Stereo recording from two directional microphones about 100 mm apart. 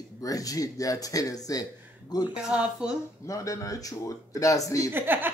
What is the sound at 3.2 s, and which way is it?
Speech, 35° left (ahead or behind).